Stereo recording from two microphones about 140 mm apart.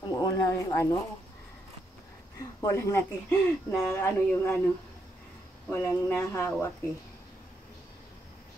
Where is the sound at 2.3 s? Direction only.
20° left (ahead or behind).